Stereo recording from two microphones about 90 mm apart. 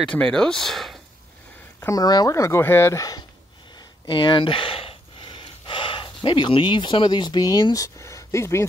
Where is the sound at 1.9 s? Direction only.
50° left (ahead or behind).